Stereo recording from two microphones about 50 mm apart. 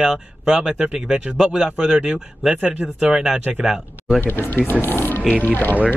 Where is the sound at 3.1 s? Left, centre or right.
Centre.